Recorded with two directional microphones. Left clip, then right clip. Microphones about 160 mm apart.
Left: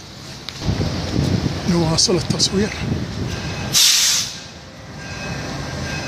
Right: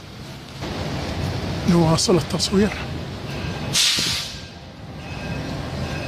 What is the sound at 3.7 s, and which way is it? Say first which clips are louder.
Vehicle: left 4 dB; 60° left (ahead or behind).